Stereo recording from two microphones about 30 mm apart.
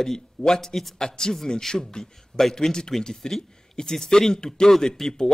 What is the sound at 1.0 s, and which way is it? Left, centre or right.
A man's voice, centre.